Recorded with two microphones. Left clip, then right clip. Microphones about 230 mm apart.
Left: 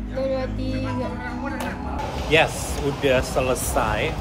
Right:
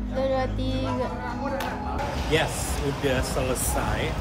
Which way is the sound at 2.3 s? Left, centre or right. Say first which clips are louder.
Left 7 dB; centre.